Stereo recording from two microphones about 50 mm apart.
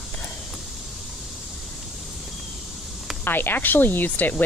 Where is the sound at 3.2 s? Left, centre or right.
Left.